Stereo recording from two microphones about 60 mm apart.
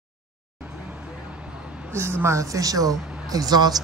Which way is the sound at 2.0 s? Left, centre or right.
Right.